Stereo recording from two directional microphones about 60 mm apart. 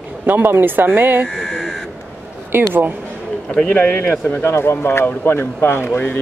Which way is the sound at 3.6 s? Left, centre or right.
Left.